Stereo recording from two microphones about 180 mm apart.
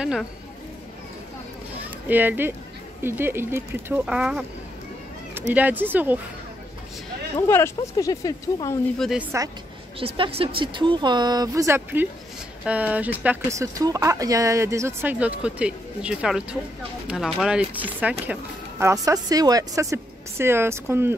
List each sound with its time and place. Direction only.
0.0 s speech: 5° right (ahead or behind)
2.0 s speech: 10° right (ahead or behind)
5.5 s speech: 10° right (ahead or behind)
7.4 s speech: 15° left (ahead or behind)
8.9 s speech: centre (ahead or behind)
9.2 s speech: 15° right (ahead or behind)
9.9 s speech: 30° right (ahead or behind); by 21.1 s 15° right (ahead or behind)